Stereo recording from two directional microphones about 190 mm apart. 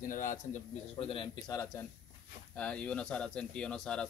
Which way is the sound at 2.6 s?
5° left (ahead or behind).